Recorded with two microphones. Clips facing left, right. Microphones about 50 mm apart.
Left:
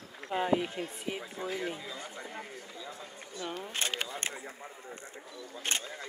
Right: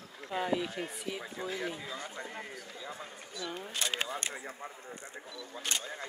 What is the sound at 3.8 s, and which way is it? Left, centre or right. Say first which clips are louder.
Speech: right 2 dB; left.